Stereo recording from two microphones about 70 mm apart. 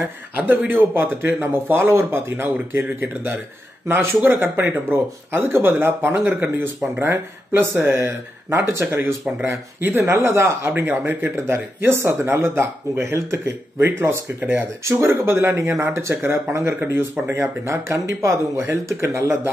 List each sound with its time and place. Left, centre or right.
0.4 s speech: right
4.4 s speech: right